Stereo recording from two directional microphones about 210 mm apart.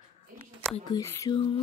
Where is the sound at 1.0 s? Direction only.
15° left (ahead or behind).